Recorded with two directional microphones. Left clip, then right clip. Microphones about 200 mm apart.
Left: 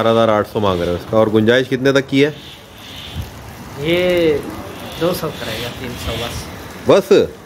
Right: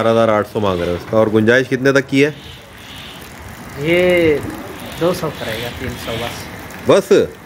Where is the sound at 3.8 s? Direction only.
20° right (ahead or behind).